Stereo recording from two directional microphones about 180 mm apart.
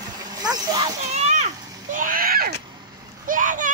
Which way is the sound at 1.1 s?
40° right (ahead or behind).